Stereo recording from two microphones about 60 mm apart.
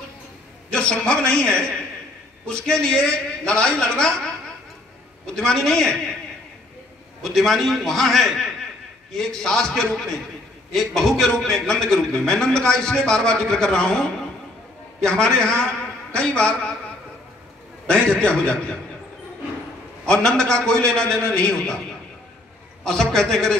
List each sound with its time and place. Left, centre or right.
0.7 s a man's voice: centre
5.2 s a man's voice: centre
7.2 s a man's voice: centre
17.8 s a man's voice: centre
20.1 s a man's voice: centre
22.8 s a man's voice: centre